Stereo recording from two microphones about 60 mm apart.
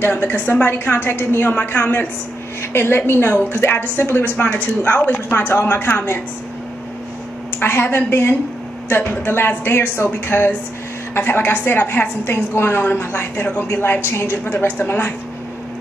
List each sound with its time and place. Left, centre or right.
0.0 s a woman's voice: left
1.5 s a woman's voice: left
7.5 s a woman's voice: left